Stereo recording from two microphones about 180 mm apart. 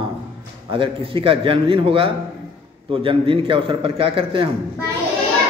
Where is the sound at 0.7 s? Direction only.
30° right (ahead or behind).